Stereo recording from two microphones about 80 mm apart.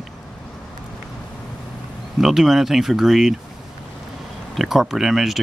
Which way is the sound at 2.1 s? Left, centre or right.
Centre.